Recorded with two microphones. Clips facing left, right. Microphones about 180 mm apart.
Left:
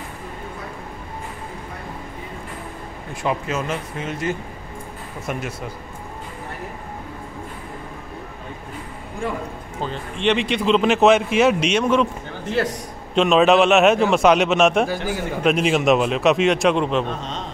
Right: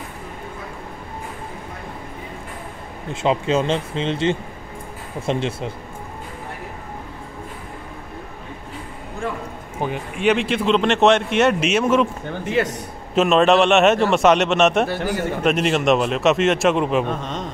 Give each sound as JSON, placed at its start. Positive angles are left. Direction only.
{"t": 3.1, "sound": "speech", "side_deg": -25}
{"t": 9.8, "sound": "a man's voice", "side_deg": -15}